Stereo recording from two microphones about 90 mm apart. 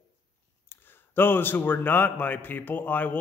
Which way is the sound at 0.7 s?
25° left (ahead or behind).